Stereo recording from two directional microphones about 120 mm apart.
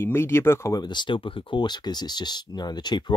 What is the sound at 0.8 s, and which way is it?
Speech, 40° left (ahead or behind).